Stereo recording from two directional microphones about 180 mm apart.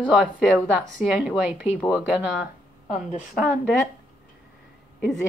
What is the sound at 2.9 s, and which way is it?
Speech, 40° left (ahead or behind).